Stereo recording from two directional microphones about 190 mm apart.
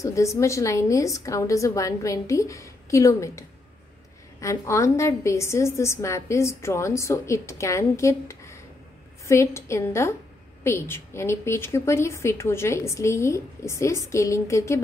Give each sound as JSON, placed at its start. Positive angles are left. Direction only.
{"t": 0.0, "sound": "a woman's voice", "side_deg": 15}